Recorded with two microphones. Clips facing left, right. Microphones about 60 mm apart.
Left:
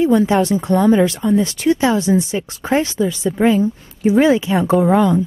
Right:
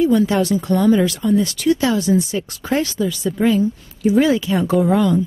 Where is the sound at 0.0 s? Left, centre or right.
Left.